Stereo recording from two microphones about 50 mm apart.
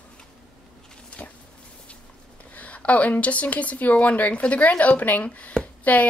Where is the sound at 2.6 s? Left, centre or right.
Left.